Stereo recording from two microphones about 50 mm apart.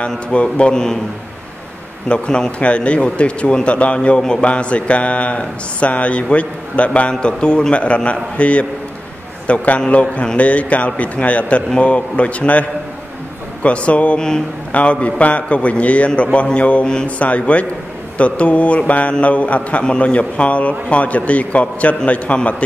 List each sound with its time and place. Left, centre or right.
0.3 s a man's voice: left
2.0 s a man's voice: centre